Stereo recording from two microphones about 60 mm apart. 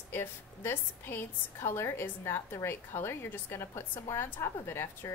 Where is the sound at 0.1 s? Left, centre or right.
Left.